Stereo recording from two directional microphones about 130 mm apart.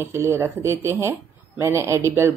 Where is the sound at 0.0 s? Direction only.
20° right (ahead or behind).